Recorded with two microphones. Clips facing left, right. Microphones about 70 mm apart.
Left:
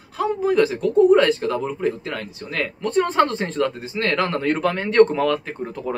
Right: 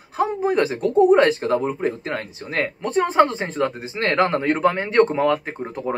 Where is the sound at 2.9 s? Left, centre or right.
Centre.